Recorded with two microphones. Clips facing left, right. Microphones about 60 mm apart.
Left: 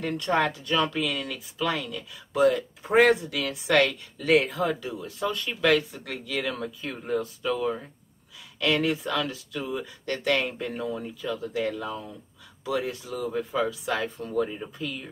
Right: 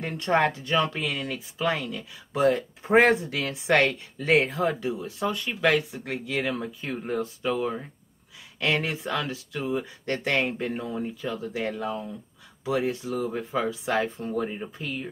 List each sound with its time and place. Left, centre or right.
0.0 s speech: right